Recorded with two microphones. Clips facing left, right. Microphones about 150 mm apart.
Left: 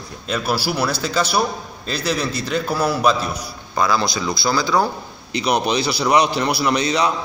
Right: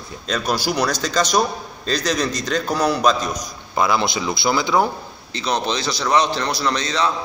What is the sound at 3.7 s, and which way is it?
Speech, 20° right (ahead or behind).